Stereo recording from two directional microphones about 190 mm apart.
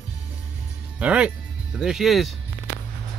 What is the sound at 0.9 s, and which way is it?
Speech, 5° right (ahead or behind).